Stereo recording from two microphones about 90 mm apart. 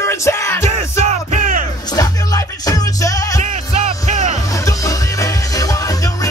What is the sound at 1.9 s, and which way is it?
Music, 45° left (ahead or behind).